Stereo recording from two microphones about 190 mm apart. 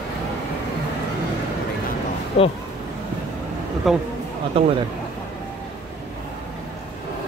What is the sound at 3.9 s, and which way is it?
Speech, centre (ahead or behind).